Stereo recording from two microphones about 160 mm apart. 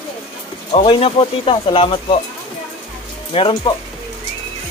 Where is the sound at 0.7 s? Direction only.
35° left (ahead or behind).